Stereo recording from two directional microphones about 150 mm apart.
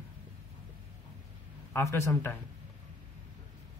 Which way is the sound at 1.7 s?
15° left (ahead or behind).